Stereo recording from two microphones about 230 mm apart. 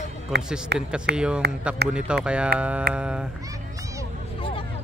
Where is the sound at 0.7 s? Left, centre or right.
Right.